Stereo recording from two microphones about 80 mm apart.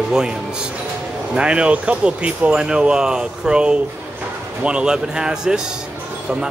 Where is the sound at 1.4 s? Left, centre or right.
Centre.